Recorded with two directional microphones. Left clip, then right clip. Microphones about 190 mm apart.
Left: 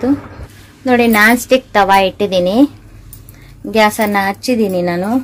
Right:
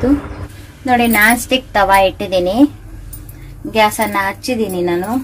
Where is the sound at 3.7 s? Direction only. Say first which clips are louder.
Left 1 dB; 60° left (ahead or behind).